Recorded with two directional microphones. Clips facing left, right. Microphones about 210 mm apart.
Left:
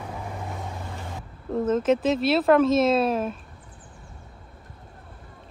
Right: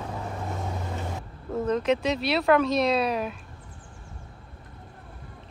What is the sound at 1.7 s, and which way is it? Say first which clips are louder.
Speech: left 3 dB; centre (ahead or behind).